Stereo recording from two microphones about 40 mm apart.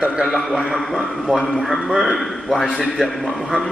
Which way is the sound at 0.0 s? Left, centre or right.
Right.